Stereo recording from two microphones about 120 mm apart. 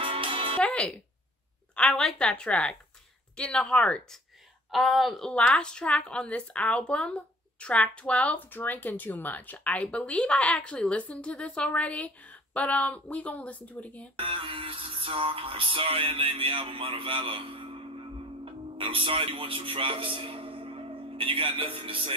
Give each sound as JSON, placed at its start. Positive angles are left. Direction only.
{"t": 0.0, "sound": "music", "side_deg": -50}
{"t": 0.6, "sound": "music", "side_deg": 10}
{"t": 1.8, "sound": "speech", "side_deg": 5}
{"t": 14.1, "sound": "music", "side_deg": -45}